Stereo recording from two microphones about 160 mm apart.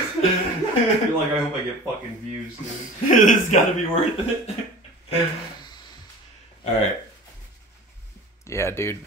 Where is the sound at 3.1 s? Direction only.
55° left (ahead or behind).